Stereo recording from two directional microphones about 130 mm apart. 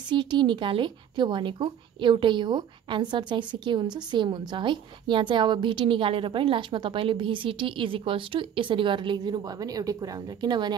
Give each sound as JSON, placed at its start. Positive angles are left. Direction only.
{"t": 0.1, "sound": "a woman's voice", "side_deg": -35}